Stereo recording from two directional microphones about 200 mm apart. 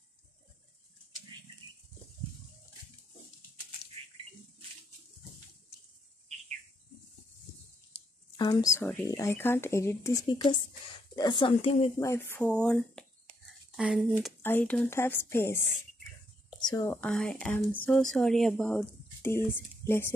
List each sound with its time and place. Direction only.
8.4 s speech: 15° left (ahead or behind)
12.0 s speech: 15° left (ahead or behind)
13.5 s a sound: 5° right (ahead or behind)
14.4 s speech: 10° left (ahead or behind)
16.4 s whispering: 20° left (ahead or behind)
17.0 s speech: 5° left (ahead or behind)